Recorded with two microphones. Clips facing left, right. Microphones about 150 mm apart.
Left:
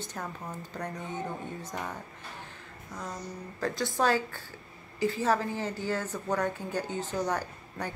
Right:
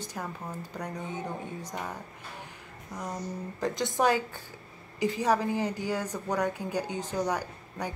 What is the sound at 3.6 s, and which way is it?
A woman's voice, 20° right (ahead or behind).